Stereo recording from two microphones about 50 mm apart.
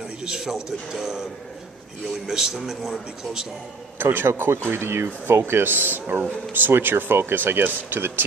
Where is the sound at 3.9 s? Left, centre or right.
Right.